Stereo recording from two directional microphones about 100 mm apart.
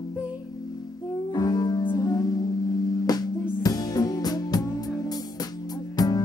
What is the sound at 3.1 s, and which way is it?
Music, 40° left (ahead or behind).